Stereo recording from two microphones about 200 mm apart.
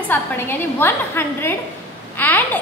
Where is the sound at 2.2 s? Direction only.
10° left (ahead or behind).